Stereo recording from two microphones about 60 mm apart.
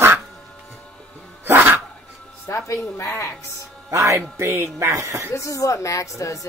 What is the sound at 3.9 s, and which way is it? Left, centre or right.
Speech, right.